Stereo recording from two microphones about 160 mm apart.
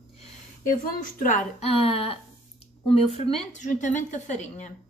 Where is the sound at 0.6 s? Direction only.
60° left (ahead or behind).